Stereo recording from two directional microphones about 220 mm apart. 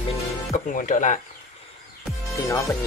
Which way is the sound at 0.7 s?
35° left (ahead or behind).